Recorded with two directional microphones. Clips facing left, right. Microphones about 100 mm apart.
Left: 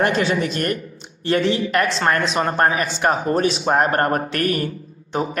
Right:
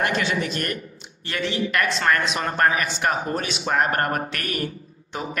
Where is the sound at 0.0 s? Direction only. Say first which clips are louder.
Left 5 dB; 35° left (ahead or behind).